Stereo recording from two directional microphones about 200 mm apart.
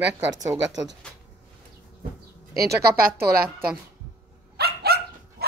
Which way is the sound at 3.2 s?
50° right (ahead or behind).